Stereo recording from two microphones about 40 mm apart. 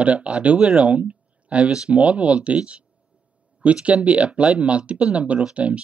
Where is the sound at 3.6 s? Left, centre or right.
Right.